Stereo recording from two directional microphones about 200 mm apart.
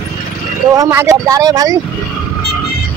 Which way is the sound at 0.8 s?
15° right (ahead or behind).